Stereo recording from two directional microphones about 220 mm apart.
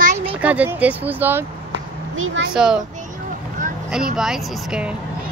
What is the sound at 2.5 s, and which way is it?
Speech, 5° right (ahead or behind).